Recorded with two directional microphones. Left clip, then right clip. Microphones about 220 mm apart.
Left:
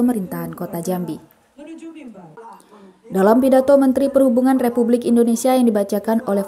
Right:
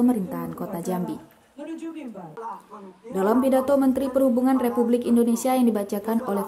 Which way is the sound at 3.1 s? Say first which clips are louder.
Left 7 dB; 25° left (ahead or behind).